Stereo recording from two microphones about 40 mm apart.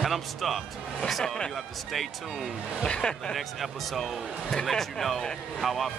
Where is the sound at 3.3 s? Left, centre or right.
Centre.